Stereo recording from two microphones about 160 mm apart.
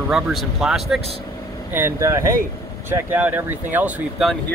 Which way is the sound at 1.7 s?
15° right (ahead or behind).